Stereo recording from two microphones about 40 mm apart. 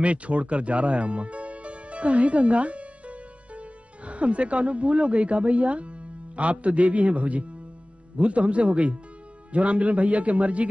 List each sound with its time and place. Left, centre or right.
0.0 s a man's voice: right